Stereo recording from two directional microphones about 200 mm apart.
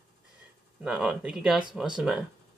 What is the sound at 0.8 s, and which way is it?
Speech, 5° right (ahead or behind).